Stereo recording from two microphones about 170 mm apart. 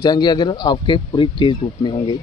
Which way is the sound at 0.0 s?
25° left (ahead or behind).